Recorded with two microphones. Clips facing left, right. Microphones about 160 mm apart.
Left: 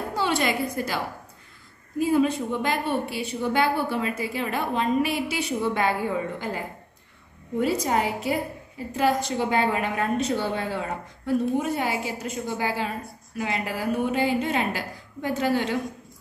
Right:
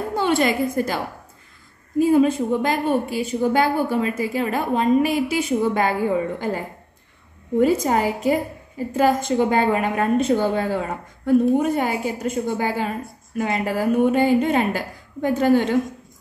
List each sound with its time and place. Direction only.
0.1 s a sound: 50° right (ahead or behind)
0.7 s a woman's voice: 45° right (ahead or behind)
7.6 s a woman's voice: 45° right (ahead or behind)